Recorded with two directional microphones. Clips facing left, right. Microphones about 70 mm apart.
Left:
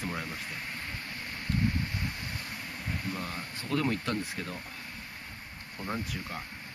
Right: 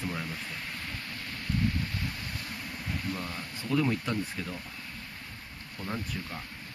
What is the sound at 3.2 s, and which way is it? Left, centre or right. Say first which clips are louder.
Speech: even; centre.